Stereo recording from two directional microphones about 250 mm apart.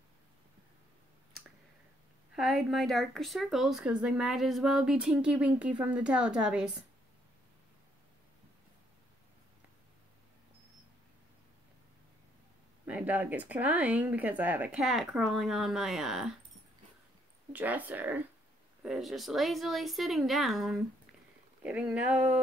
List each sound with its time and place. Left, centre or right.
2.3 s speech: centre
12.8 s speech: centre
17.5 s speech: centre